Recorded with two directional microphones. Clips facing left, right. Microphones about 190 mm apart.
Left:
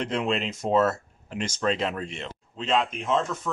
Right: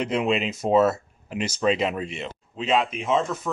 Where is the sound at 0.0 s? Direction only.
10° right (ahead or behind).